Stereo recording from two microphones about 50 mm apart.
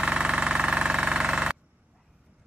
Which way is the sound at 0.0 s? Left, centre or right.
Right.